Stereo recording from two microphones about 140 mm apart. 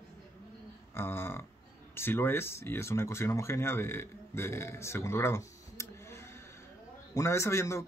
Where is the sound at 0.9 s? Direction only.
15° left (ahead or behind).